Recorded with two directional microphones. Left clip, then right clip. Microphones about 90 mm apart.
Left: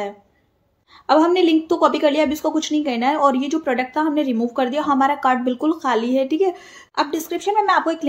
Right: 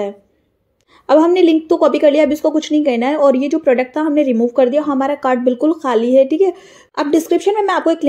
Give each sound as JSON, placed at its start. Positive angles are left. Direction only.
{"t": 1.0, "sound": "a woman's voice", "side_deg": -35}
{"t": 3.2, "sound": "a woman's voice", "side_deg": -25}
{"t": 7.0, "sound": "a woman's voice", "side_deg": -35}